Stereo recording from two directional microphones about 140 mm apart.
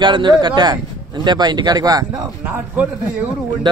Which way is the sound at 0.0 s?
30° right (ahead or behind).